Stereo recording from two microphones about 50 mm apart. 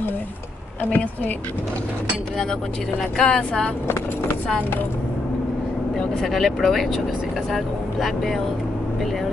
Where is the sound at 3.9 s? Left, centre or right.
Left.